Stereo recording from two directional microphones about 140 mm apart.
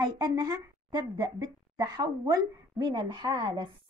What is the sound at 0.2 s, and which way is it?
A woman's voice, 25° right (ahead or behind).